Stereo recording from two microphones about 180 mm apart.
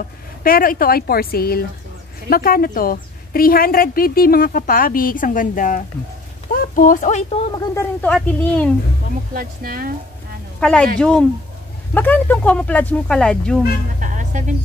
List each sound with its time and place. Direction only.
0.4 s a woman's voice: 50° left (ahead or behind)
7.6 s speech: 15° left (ahead or behind)
9.3 s speech: 55° right (ahead or behind)
10.6 s speech: 5° left (ahead or behind)
13.9 s speech: 45° right (ahead or behind)